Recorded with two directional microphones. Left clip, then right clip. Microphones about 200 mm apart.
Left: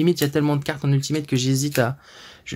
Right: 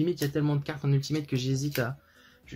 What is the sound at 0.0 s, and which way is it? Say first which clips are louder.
Speech: left 8 dB; 40° left (ahead or behind).